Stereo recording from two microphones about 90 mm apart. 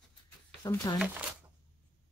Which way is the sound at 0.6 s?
45° left (ahead or behind).